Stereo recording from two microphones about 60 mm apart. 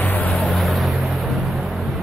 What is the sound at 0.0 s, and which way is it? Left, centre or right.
Vehicle, left.